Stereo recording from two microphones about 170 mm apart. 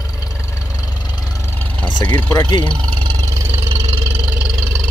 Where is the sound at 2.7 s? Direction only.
25° right (ahead or behind).